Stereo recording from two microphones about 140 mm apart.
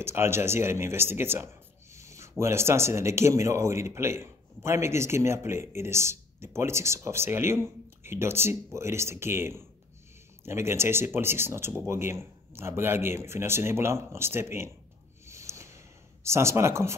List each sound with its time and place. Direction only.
0.0 s speech: 15° right (ahead or behind)
15.2 s a sound: 20° right (ahead or behind)
16.3 s speech: 20° right (ahead or behind)